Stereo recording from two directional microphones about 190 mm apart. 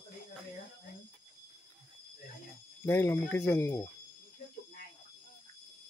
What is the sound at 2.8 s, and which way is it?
Speech, 15° left (ahead or behind).